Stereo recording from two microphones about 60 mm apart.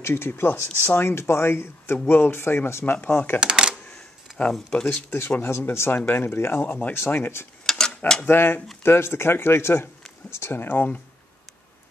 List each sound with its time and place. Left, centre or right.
0.0 s speech: left
3.3 s speech: centre
4.4 s speech: centre
5.7 s speech: left
7.6 s a sound: centre
8.3 s speech: left